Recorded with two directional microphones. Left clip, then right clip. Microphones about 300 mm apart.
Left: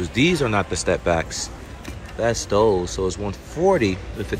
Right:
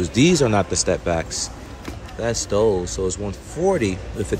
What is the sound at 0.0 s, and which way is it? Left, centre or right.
A man's voice, centre.